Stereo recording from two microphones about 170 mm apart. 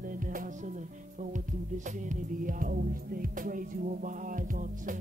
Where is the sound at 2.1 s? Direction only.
50° right (ahead or behind).